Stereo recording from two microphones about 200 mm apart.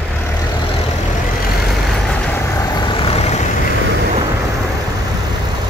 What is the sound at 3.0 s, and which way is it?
Vehicle, 30° left (ahead or behind).